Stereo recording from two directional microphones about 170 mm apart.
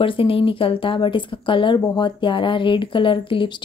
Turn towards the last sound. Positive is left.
turn(degrees=30)  # may be behind; listen again after turning